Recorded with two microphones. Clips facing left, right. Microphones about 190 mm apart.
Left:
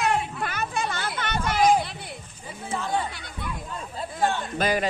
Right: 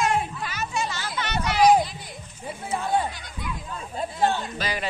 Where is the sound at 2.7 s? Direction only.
55° left (ahead or behind).